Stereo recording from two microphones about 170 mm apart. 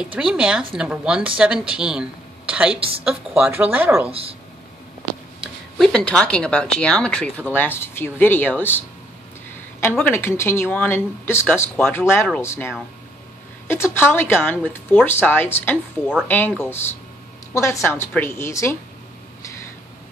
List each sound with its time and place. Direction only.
0.0 s a woman's voice: 5° right (ahead or behind)
4.1 s speech: 35° right (ahead or behind)
5.4 s speech: centre (ahead or behind)
9.8 s speech: 10° left (ahead or behind)